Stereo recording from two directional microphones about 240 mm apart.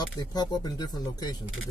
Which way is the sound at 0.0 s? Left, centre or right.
Centre.